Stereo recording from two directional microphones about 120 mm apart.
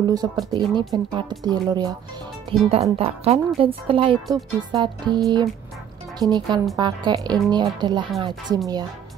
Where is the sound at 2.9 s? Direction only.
55° right (ahead or behind).